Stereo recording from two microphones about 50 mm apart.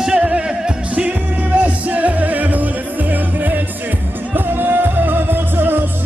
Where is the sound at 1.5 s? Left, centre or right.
Right.